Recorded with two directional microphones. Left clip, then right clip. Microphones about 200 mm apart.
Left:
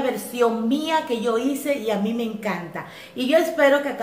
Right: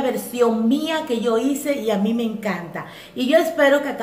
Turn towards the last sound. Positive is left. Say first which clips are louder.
# right 1 dB
turn(degrees=-5)  # may be behind; listen again after turning